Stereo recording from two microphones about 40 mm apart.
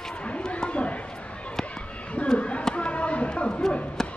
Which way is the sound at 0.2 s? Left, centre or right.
Left.